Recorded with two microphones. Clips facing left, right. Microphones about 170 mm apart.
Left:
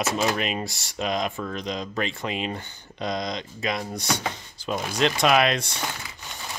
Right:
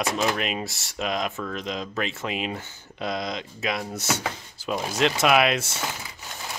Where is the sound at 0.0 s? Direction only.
Centre (ahead or behind).